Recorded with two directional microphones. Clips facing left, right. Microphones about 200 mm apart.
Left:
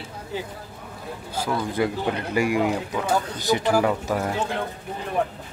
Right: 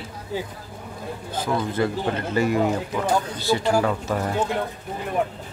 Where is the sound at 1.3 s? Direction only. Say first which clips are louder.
Right 1 dB; 10° left (ahead or behind).